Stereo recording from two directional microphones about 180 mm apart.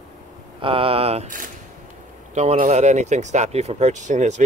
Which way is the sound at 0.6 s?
30° right (ahead or behind).